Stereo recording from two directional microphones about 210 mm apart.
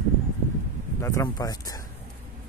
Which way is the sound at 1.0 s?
15° left (ahead or behind).